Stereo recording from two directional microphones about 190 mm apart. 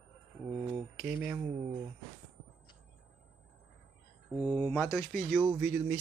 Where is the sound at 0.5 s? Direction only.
15° right (ahead or behind).